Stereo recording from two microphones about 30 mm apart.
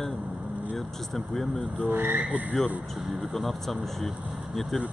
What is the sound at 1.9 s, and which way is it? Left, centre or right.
Speech, right.